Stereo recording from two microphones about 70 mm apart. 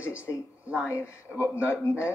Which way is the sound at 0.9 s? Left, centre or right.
Left.